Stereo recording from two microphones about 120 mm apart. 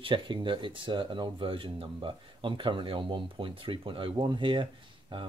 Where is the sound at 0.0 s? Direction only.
40° right (ahead or behind).